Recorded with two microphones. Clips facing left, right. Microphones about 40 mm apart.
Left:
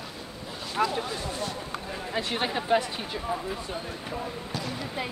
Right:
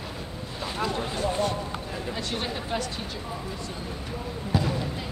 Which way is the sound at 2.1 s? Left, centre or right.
Left.